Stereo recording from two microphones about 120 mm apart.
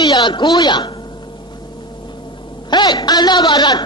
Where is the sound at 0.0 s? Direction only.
35° left (ahead or behind).